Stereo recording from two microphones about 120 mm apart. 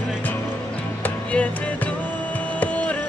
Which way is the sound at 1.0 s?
10° left (ahead or behind).